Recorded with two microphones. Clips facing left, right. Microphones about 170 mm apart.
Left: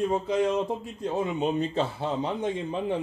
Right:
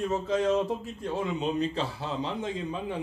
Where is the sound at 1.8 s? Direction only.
25° left (ahead or behind).